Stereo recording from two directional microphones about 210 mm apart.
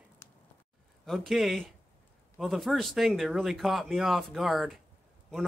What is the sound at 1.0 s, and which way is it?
Speech, centre (ahead or behind).